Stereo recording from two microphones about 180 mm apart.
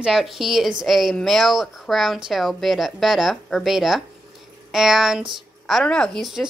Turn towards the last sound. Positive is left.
turn(degrees=0)  # may be behind; listen again after turning